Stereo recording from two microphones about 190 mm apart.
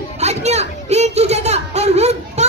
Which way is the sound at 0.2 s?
35° right (ahead or behind).